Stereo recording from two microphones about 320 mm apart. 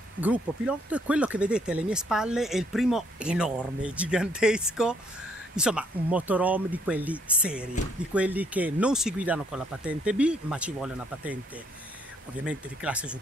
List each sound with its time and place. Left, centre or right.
0.2 s speech: centre